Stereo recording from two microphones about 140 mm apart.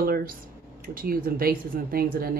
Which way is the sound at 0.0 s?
90° right.